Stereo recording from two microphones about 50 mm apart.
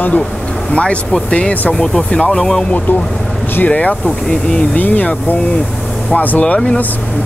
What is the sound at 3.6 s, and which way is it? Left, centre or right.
Speech, left.